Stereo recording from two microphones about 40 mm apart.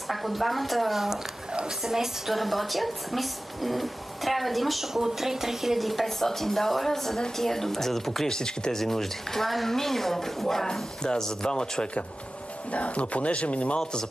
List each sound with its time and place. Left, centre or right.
0.1 s a woman's voice: centre
8.4 s speech: centre
12.7 s speech: left